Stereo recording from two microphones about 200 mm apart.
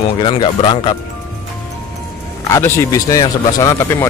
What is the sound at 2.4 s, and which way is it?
Speech, 15° left (ahead or behind).